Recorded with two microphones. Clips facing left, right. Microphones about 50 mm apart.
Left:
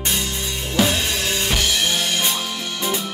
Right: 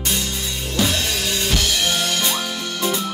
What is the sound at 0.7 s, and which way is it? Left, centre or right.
Drum kit, left.